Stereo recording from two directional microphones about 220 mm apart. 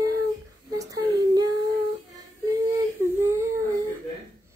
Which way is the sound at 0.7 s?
15° right (ahead or behind).